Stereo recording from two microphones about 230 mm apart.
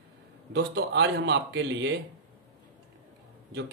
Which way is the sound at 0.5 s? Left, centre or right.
Right.